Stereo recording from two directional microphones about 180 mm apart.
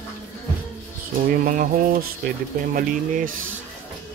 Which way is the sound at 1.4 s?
50° right (ahead or behind).